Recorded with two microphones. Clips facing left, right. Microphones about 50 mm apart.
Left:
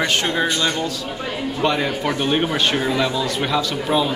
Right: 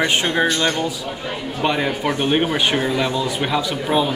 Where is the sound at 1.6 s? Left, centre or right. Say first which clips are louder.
Right 1 dB; centre.